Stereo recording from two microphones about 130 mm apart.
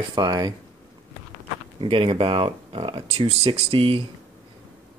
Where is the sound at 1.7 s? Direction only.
40° right (ahead or behind).